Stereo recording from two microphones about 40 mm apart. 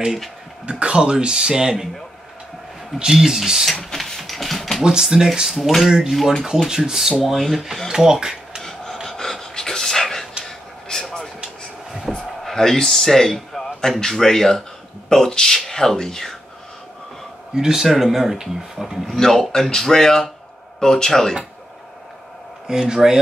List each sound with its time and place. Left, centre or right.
0.7 s speech: right
3.1 s speech: centre
3.9 s mechanisms: centre
4.2 s dog: centre
4.8 s speech: centre
5.6 s speech: centre
5.9 s speech: centre
7.9 s speech: centre
9.0 s pant: centre
10.4 s a sound: centre
12.4 s a man's voice: centre
17.6 s speech: centre
19.0 s speech: centre
22.7 s speech: centre